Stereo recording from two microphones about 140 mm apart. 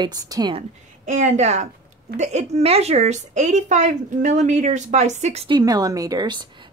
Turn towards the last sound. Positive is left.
turn(degrees=-30)  # may be behind; listen again after turning